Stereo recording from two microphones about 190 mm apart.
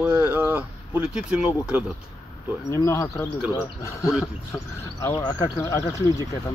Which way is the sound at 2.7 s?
15° left (ahead or behind).